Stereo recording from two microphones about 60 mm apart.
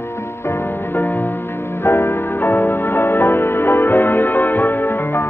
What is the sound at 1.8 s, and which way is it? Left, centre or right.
Music, left.